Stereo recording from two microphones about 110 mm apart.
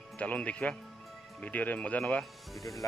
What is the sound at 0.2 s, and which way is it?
Speech, 10° left (ahead or behind).